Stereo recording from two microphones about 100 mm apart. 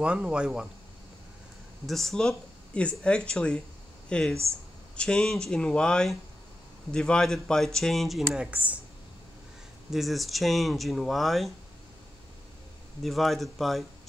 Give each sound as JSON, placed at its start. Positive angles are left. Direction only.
{"t": 0.0, "sound": "speech", "side_deg": -10}
{"t": 1.9, "sound": "speech", "side_deg": 5}
{"t": 8.5, "sound": "speech", "side_deg": -15}
{"t": 9.8, "sound": "speech", "side_deg": 0}
{"t": 13.0, "sound": "speech", "side_deg": 0}